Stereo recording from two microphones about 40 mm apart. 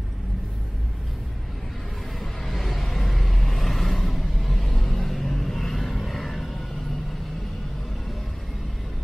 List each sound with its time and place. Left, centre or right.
2.1 s vehicle: centre